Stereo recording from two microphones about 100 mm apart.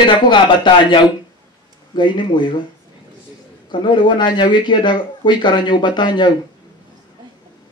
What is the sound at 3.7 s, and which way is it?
Speech, 50° left (ahead or behind).